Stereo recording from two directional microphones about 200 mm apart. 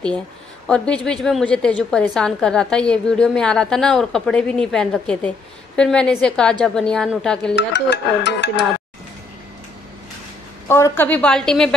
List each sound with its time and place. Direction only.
0.7 s a woman's voice: 5° left (ahead or behind)
7.5 s speech: 60° left (ahead or behind)
10.7 s a woman's voice: 10° left (ahead or behind)